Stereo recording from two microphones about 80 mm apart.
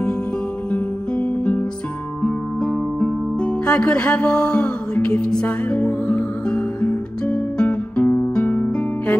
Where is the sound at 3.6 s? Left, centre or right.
Centre.